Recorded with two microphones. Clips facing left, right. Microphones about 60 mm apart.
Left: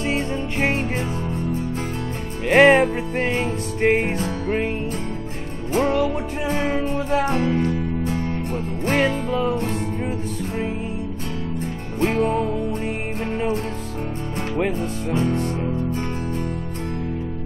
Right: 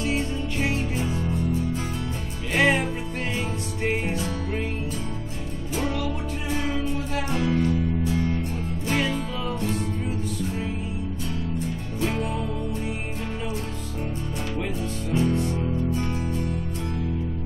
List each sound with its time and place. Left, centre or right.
0.0 s music: left
5.8 s music: left
12.0 s music: left
14.6 s music: left